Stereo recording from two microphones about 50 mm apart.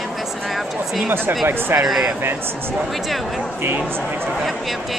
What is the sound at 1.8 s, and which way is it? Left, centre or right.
Speech, centre.